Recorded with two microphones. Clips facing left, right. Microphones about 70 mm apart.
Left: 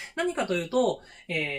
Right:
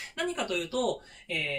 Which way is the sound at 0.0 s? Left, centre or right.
Left.